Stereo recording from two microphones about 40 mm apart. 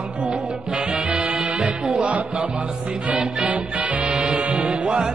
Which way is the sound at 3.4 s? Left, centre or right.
Right.